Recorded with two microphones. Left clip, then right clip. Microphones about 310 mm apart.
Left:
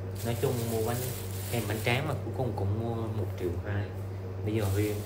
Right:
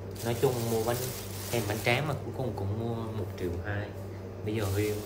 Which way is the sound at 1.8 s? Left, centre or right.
Centre.